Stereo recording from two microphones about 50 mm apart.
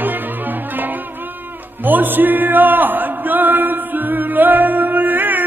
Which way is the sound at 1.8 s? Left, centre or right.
Right.